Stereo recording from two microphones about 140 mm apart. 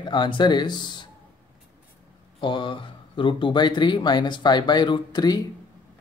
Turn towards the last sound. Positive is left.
turn(degrees=30)  # may be behind; listen again after turning